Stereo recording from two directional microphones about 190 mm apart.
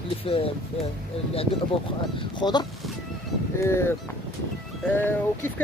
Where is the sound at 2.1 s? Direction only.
25° left (ahead or behind).